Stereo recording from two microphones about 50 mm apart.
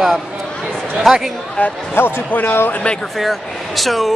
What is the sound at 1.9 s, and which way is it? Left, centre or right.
Speech, left.